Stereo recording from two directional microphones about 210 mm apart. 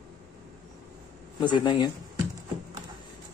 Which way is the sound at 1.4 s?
20° left (ahead or behind).